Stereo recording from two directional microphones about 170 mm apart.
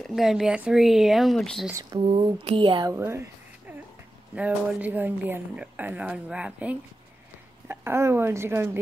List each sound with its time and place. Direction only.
0.0 s speech: centre (ahead or behind)
1.8 s speech: 25° right (ahead or behind)
2.9 s a woman's voice: 15° right (ahead or behind)
4.4 s a woman's voice: 10° right (ahead or behind)